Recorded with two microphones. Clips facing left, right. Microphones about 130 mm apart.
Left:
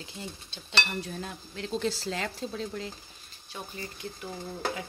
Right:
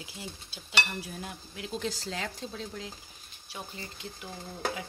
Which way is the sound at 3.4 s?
15° right (ahead or behind).